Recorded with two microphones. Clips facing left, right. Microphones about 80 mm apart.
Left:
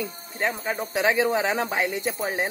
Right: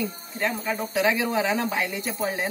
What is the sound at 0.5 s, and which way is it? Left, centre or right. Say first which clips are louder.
A man's voice: even; left.